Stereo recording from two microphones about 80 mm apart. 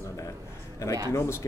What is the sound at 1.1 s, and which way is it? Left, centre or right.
Speech, left.